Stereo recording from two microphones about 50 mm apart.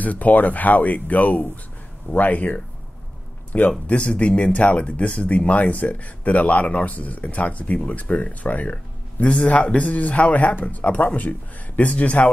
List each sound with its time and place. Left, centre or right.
0.0 s speech: left
3.8 s speech: left